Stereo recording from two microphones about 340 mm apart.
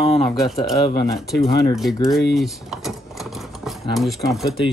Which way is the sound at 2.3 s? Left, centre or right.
Centre.